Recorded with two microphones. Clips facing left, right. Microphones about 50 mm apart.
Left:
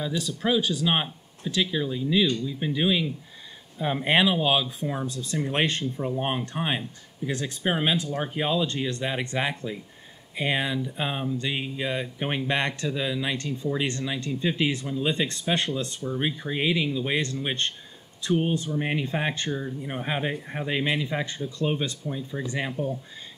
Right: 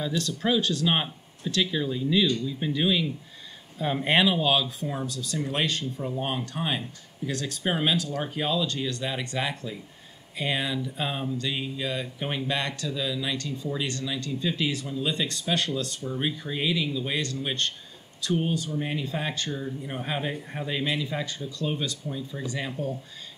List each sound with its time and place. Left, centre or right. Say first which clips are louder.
0.0 s speech: even; centre
5.0 s speech: left 2 dB; left
19.5 s speech: left 2 dB; centre